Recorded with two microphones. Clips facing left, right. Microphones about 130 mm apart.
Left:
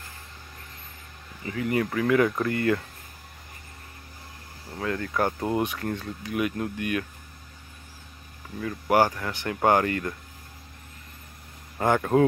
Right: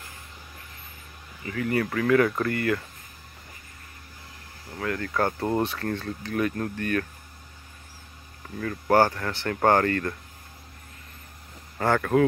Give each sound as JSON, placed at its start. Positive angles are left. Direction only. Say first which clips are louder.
{"t": 1.4, "sound": "speech", "louder": "even", "side_deg": 25}
{"t": 4.7, "sound": "speech", "louder": "even", "side_deg": 20}
{"t": 8.5, "sound": "speech", "louder": "right 1 dB", "side_deg": 15}
{"t": 11.8, "sound": "speech", "louder": "left 1 dB", "side_deg": 20}